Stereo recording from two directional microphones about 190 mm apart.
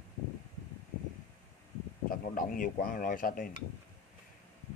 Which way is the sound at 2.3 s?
45° left (ahead or behind).